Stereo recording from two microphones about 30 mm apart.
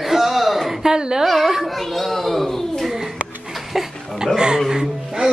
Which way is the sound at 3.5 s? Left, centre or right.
Centre.